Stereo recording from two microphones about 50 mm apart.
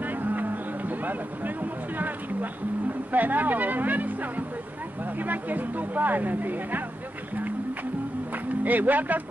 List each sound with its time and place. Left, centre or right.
0.0 s music: right
3.1 s speech: right
8.6 s speech: right